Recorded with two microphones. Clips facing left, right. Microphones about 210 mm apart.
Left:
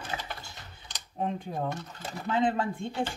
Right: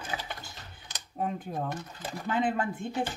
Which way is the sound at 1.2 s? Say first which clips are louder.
Left 1 dB; 5° right (ahead or behind).